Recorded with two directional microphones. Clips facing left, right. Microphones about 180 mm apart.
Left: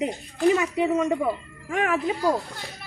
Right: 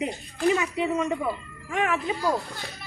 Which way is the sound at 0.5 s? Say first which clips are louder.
Left 3 dB; 40° left (ahead or behind).